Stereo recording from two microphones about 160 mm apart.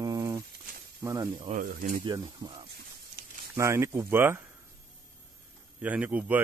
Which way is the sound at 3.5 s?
15° right (ahead or behind).